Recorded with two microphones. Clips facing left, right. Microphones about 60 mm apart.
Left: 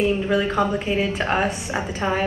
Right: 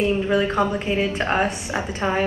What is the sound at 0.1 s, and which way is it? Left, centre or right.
A woman's voice, centre.